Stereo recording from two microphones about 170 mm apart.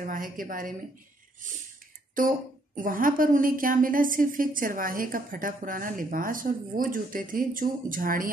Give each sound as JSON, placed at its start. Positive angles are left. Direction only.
{"t": 0.0, "sound": "a woman's voice", "side_deg": -55}
{"t": 2.1, "sound": "a woman's voice", "side_deg": -50}